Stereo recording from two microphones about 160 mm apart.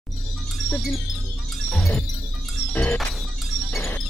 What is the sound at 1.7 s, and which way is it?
Music, 5° left (ahead or behind).